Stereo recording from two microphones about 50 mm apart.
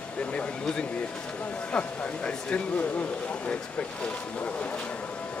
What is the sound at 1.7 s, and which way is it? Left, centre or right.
Speech, left.